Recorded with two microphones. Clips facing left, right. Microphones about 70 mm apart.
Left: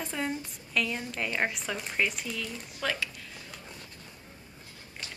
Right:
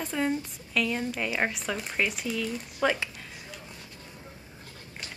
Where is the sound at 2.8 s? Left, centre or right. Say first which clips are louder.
Right 6 dB; centre.